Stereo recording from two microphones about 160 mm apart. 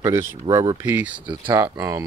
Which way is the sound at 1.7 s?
20° right (ahead or behind).